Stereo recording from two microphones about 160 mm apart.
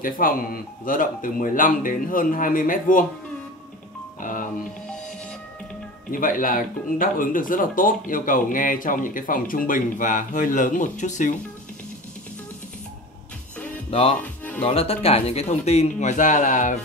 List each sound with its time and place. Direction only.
0.0 s speech: 60° left (ahead or behind)
4.2 s music: 55° left (ahead or behind)
6.1 s speech: 60° left (ahead or behind)
13.8 s speech: 35° left (ahead or behind); by 16.8 s 55° left (ahead or behind)